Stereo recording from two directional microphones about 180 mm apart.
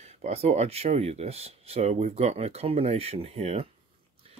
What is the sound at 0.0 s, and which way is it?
Speech, 35° right (ahead or behind).